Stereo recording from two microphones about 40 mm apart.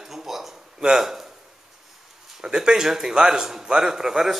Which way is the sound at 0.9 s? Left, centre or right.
Centre.